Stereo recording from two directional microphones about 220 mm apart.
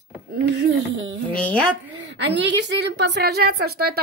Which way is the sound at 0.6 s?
55° right (ahead or behind).